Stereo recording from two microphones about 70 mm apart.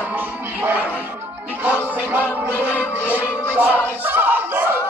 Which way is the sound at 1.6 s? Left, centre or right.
Right.